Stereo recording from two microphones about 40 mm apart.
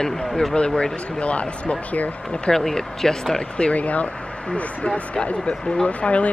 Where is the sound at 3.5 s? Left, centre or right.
Left.